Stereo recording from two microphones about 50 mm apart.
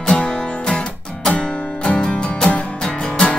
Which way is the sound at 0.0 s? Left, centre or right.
Centre.